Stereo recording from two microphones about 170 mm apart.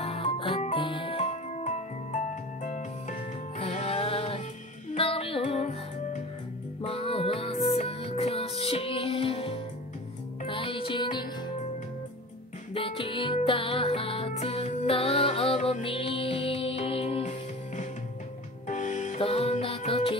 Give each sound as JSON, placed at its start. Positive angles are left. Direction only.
{"t": 0.0, "sound": "music", "side_deg": 35}
{"t": 12.7, "sound": "music", "side_deg": 30}